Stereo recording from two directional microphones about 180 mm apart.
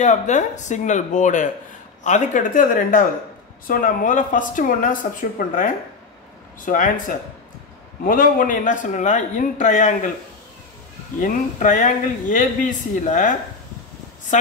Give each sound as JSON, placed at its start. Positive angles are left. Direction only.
{"t": 0.0, "sound": "a man's voice", "side_deg": 40}
{"t": 11.1, "sound": "a man's voice", "side_deg": 45}